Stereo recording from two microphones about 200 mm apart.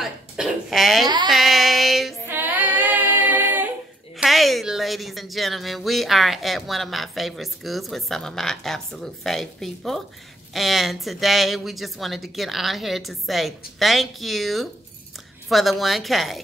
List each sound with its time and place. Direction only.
0.0 s speech: centre (ahead or behind)
1.0 s a sound: 20° right (ahead or behind)
1.3 s child singing: centre (ahead or behind)
2.2 s female singing: 10° right (ahead or behind)
4.2 s speech: centre (ahead or behind)